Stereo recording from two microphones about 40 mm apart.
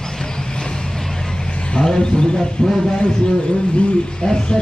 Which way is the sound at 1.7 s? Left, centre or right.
Left.